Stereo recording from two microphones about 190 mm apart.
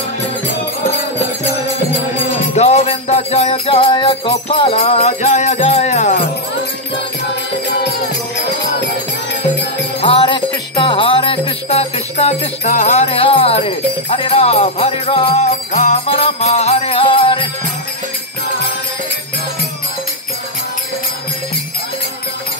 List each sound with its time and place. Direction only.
2.5 s music: 35° left (ahead or behind)
10.0 s jingle bell: 25° left (ahead or behind)